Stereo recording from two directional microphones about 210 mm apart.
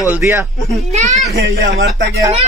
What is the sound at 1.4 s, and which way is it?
Speech, 60° right (ahead or behind).